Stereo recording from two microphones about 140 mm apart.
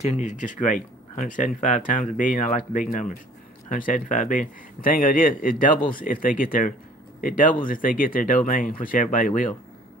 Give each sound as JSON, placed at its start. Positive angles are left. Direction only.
{"t": 0.0, "sound": "a man's voice", "side_deg": 55}